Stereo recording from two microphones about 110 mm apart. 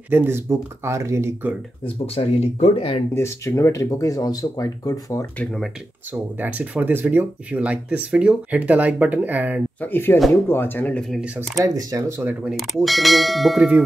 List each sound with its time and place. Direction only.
0.1 s speech: 20° right (ahead or behind)
2.1 s speech: 65° left (ahead or behind)
3.2 s speech: 25° left (ahead or behind)
6.1 s speech: 15° right (ahead or behind)
9.8 s speech: 20° left (ahead or behind)
11.5 s speech: 30° right (ahead or behind)
12.4 s clang: centre (ahead or behind)